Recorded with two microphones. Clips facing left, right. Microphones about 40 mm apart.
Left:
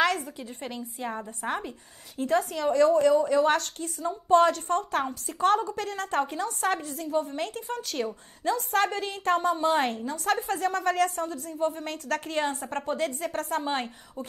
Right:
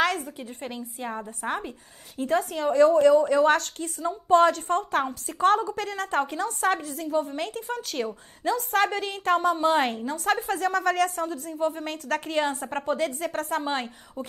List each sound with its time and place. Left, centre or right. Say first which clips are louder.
0.6 s a woman's voice: even; centre
2.2 s a woman's voice: right 1 dB; right
4.1 s a woman's voice: right 1 dB; centre
4.6 s a woman's voice: right 2 dB; centre
8.7 s a woman's voice: right 3 dB; centre
10.3 s a woman's voice: right 1 dB; centre
10.6 s a woman's voice: right 2 dB; centre
11.1 s a woman's voice: right 1 dB; centre